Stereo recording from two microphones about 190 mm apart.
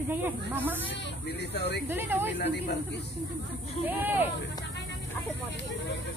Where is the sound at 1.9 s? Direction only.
10° right (ahead or behind).